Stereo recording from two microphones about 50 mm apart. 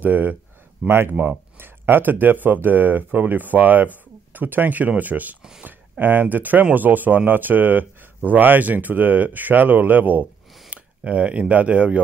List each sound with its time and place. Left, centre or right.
0.0 s speech: right
0.8 s speech: right
1.1 s speech: right
1.6 s speech: right
10.7 s speech: right